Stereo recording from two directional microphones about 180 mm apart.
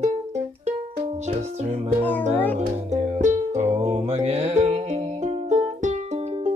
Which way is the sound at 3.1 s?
40° right (ahead or behind).